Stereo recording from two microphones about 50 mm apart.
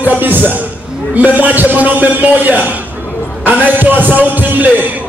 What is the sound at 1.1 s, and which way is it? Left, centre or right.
A man's voice, right.